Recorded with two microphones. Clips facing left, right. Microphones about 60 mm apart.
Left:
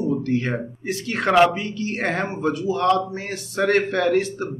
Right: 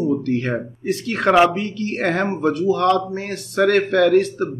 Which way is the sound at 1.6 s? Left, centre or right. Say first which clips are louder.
Right 3 dB; right.